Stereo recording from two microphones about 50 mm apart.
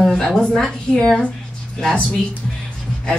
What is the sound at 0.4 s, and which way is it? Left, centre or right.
Speech, centre.